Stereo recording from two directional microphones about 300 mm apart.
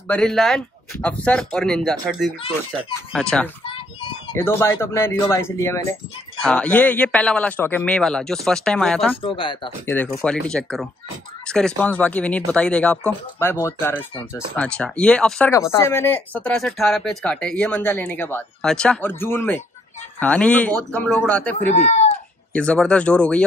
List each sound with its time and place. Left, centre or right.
0.1 s speech: centre
9.2 s speech: centre
9.9 s speech: centre
21.7 s speech: left
22.5 s speech: centre